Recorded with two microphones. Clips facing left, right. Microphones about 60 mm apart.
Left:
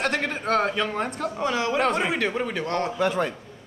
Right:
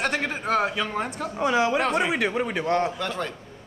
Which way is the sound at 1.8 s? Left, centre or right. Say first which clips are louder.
Even; centre.